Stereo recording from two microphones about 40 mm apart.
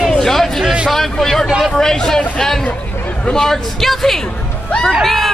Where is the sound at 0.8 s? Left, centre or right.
Centre.